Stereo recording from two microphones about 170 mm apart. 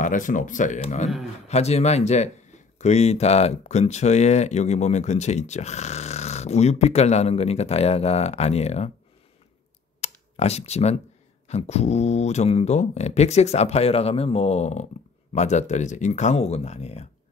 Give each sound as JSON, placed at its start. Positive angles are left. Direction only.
{"t": 0.0, "sound": "speech", "side_deg": 50}
{"t": 9.9, "sound": "computer keyboard", "side_deg": 40}
{"t": 11.4, "sound": "speech", "side_deg": 40}